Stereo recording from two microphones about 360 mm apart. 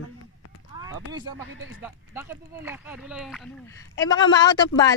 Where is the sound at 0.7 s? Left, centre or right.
Centre.